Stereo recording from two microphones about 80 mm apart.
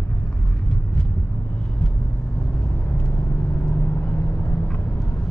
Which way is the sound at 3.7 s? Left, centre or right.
Centre.